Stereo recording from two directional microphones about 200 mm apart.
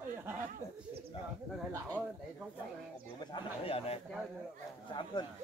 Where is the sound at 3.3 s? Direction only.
30° left (ahead or behind).